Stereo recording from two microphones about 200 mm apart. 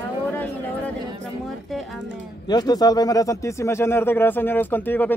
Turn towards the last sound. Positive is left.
turn(degrees=10)  # may be behind; listen again after turning